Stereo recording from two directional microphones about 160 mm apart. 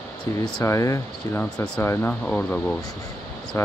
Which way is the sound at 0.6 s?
20° left (ahead or behind).